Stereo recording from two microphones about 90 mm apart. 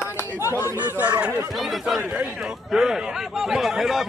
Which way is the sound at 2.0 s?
15° right (ahead or behind).